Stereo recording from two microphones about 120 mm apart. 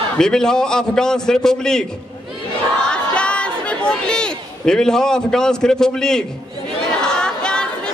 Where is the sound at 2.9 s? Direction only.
10° left (ahead or behind).